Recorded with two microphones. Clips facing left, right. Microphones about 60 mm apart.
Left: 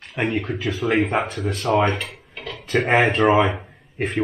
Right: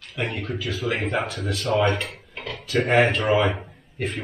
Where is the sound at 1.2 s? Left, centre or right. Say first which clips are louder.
Left 2 dB; left.